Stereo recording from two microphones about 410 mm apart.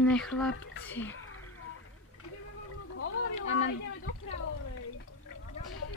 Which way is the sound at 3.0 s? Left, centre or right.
Left.